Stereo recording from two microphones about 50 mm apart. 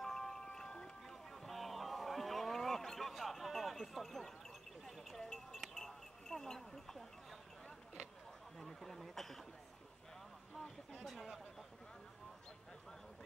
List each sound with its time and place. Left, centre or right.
0.0 s wind chime: centre
4.8 s a sound: centre
8.5 s speech: centre
10.6 s speech: centre